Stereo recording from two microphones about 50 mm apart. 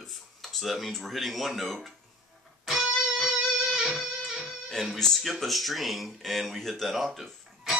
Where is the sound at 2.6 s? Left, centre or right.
Centre.